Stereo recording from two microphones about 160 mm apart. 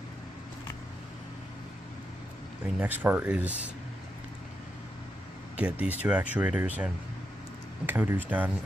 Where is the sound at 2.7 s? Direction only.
10° right (ahead or behind).